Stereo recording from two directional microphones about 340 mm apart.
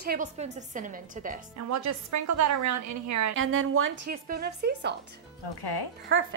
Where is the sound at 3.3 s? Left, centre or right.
Right.